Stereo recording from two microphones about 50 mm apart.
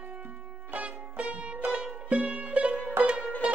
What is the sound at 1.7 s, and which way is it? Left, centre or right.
Music, right.